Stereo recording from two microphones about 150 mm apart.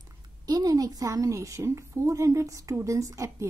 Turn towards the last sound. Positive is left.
turn(degrees=-20)  # may be behind; listen again after turning